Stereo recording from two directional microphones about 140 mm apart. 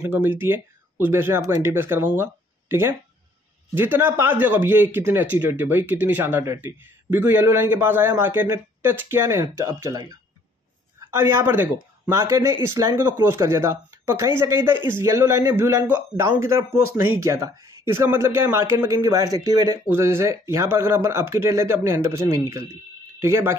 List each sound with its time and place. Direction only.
0.0 s speech: 15° right (ahead or behind)